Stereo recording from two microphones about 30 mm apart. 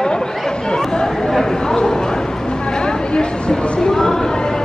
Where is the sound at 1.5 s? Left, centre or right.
Left.